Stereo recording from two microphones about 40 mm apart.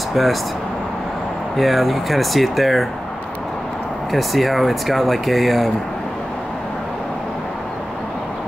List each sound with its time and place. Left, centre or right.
0.1 s speech: centre
1.6 s speech: centre
4.1 s speech: centre